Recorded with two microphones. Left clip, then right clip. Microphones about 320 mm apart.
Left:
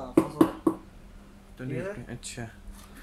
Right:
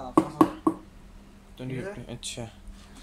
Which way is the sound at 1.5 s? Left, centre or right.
Centre.